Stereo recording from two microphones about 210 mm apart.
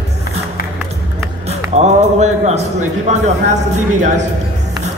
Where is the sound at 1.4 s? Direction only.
30° right (ahead or behind).